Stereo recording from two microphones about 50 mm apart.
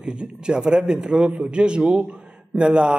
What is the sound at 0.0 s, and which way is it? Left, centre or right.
A man's voice, centre.